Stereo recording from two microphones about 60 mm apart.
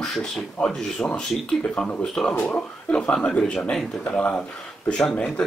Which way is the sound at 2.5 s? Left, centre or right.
Left.